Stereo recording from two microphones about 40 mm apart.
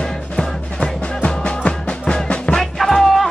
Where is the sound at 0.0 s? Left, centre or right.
Centre.